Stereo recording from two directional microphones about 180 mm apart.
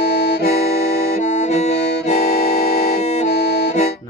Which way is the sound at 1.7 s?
70° left (ahead or behind).